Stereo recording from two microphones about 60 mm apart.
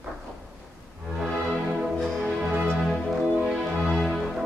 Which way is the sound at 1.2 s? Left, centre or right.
Centre.